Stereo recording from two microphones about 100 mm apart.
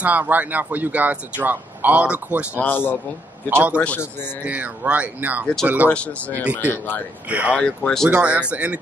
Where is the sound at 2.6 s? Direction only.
20° left (ahead or behind).